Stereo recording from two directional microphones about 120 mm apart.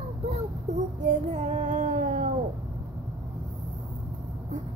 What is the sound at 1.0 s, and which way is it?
Child singing, 75° right (ahead or behind).